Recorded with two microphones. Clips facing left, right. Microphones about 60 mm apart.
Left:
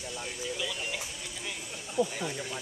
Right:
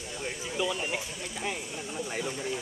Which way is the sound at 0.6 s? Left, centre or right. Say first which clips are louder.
Right 9 dB; right.